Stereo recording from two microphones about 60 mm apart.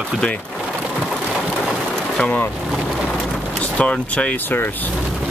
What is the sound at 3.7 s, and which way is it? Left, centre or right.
Speech, left.